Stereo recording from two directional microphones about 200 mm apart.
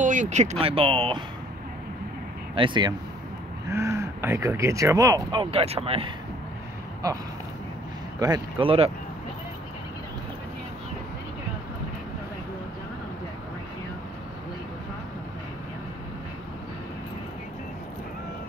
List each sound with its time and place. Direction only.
0.0 s speech: 40° right (ahead or behind)
2.5 s speech: 25° right (ahead or behind)
8.2 s speech: 20° right (ahead or behind)